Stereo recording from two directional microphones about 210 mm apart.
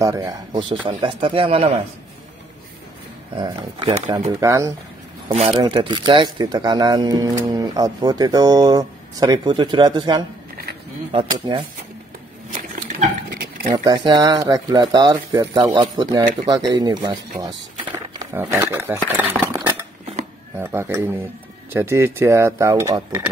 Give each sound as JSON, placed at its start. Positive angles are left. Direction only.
{"t": 0.0, "sound": "speech", "side_deg": -15}
{"t": 3.3, "sound": "speech", "side_deg": -25}
{"t": 4.4, "sound": "speech", "side_deg": -15}
{"t": 5.3, "sound": "speech", "side_deg": -25}
{"t": 13.8, "sound": "speech", "side_deg": -20}
{"t": 19.5, "sound": "dishes", "side_deg": -15}
{"t": 20.5, "sound": "speech", "side_deg": -10}